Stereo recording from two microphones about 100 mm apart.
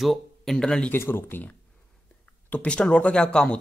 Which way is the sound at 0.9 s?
20° left (ahead or behind).